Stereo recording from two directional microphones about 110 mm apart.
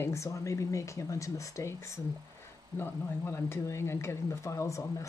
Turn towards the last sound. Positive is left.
turn(degrees=30)  # may be behind; listen again after turning